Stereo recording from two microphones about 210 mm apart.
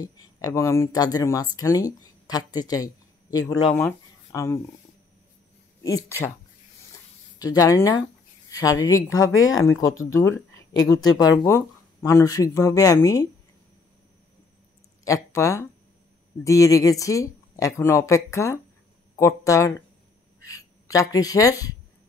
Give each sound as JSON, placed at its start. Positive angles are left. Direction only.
{"t": 0.0, "sound": "speech", "side_deg": 15}
{"t": 5.9, "sound": "speech", "side_deg": 15}
{"t": 7.3, "sound": "speech", "side_deg": 15}
{"t": 15.0, "sound": "speech", "side_deg": 15}